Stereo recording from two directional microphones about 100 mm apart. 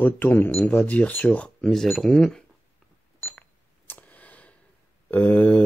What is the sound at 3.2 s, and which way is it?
Cash register, 20° left (ahead or behind).